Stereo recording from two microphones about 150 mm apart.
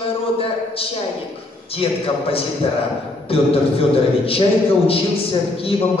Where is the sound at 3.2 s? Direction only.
40° left (ahead or behind).